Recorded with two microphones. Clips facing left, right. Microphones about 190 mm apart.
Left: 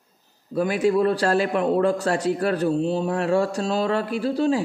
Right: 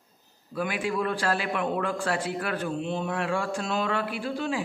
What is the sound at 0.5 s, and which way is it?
A man's voice, 40° left (ahead or behind).